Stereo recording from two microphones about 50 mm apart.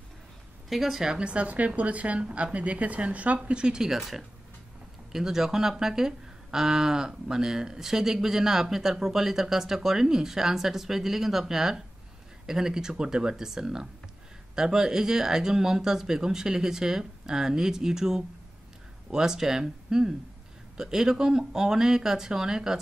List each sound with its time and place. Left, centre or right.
0.7 s speech: centre
1.1 s speech: right
4.0 s speech: centre